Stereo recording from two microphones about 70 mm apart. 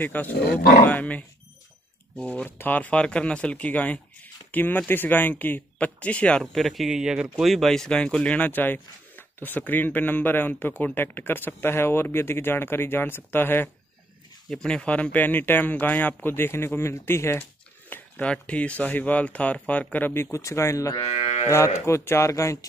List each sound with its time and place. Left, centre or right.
0.0 s speech: left
6.4 s speech: centre; by 13.7 s left
14.5 s speech: centre; by 17.4 s left
17.4 s a sound: left
18.2 s speech: centre
20.2 s speech: left